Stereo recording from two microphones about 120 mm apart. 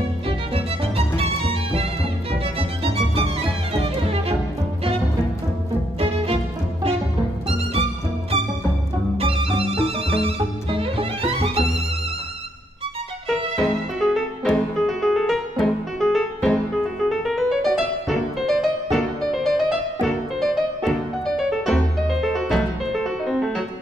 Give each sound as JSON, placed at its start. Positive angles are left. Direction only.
{"t": 0.9, "sound": "music", "side_deg": -50}
{"t": 7.4, "sound": "music", "side_deg": -55}
{"t": 9.2, "sound": "music", "side_deg": -55}
{"t": 13.6, "sound": "music", "side_deg": 0}